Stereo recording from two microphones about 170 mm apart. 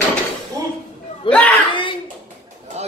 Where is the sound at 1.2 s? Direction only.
5° left (ahead or behind).